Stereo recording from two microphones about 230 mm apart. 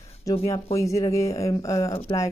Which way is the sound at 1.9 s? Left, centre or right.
Left.